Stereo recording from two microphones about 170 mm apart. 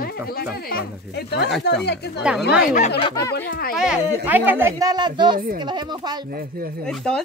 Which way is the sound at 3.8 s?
10° right (ahead or behind).